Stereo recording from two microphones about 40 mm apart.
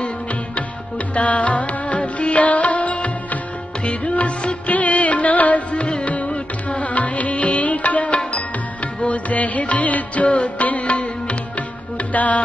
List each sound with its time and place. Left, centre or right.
0.6 s music: left